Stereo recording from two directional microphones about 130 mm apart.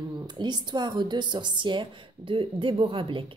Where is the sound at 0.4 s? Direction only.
35° right (ahead or behind).